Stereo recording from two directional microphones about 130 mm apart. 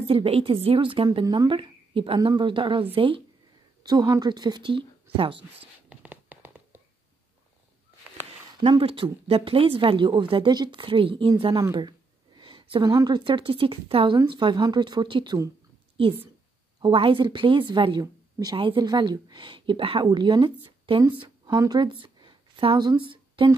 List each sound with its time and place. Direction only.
0.0 s speech: 45° right (ahead or behind)
1.2 s speech: 30° right (ahead or behind)
1.5 s speech: 40° right (ahead or behind)
3.8 s speech: 30° right (ahead or behind)
5.9 s cat: 15° right (ahead or behind)
8.5 s speech: 40° right (ahead or behind)
12.4 s a sound: 40° right (ahead or behind)
12.9 s speech: 35° right (ahead or behind)
16.8 s speech: 45° right (ahead or behind)
18.0 s a sound: 30° right (ahead or behind)
18.6 s speech: 35° right (ahead or behind)